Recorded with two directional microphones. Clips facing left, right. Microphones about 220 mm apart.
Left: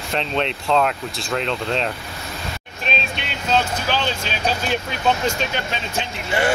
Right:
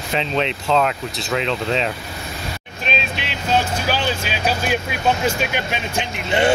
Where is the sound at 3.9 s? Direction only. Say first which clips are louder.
Right 1 dB; 10° right (ahead or behind).